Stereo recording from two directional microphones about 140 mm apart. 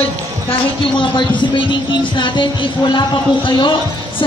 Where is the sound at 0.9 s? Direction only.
35° left (ahead or behind).